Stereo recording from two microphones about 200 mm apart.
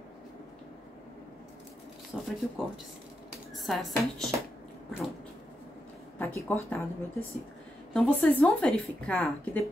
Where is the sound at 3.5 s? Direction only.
Centre (ahead or behind).